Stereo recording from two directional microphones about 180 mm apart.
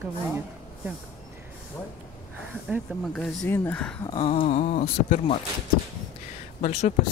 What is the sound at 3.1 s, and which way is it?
Speech, 10° left (ahead or behind).